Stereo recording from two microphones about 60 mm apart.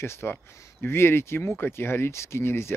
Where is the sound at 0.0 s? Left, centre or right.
Left.